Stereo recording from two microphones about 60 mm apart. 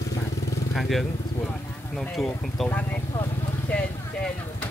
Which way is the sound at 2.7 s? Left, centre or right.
Left.